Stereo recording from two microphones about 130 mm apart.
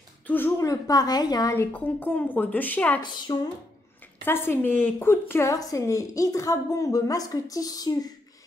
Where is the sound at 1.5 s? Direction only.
15° left (ahead or behind).